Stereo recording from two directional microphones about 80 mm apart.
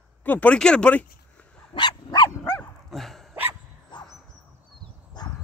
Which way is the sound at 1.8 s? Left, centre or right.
Left.